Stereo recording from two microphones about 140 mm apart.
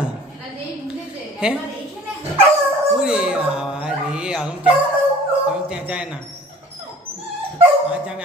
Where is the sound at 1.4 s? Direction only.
5° right (ahead or behind).